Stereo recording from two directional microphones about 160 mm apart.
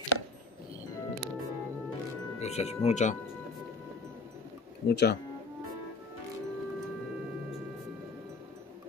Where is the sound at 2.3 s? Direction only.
40° left (ahead or behind).